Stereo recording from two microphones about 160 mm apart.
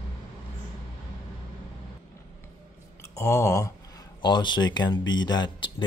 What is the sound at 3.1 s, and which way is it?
Speech, 20° left (ahead or behind).